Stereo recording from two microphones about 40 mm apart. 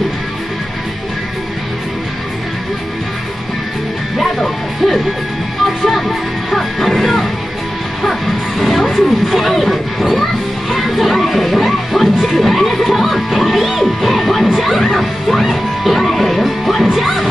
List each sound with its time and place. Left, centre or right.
4.2 s music: centre
8.0 s bow-wow: centre
10.7 s music: centre